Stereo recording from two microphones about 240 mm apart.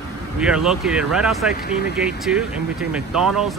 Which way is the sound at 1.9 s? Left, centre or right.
Centre.